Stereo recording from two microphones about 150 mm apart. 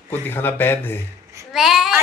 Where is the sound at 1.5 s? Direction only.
Centre (ahead or behind).